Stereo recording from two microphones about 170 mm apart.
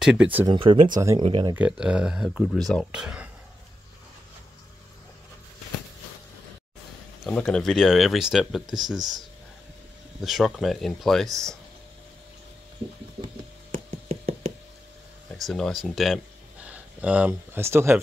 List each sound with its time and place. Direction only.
0.0 s speech: 5° right (ahead or behind)
0.5 s speech: 30° right (ahead or behind)
1.5 s speech: 5° right (ahead or behind)
7.2 s speech: 5° left (ahead or behind)
10.2 s speech: centre (ahead or behind)
13.8 s a sound: 35° right (ahead or behind)
15.3 s speech: centre (ahead or behind)